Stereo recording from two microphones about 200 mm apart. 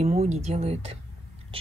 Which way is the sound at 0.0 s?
30° right (ahead or behind).